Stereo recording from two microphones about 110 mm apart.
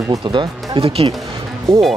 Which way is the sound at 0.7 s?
65° right (ahead or behind).